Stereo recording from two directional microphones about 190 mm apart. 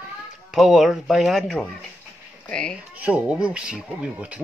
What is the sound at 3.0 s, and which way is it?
Speech, 5° right (ahead or behind).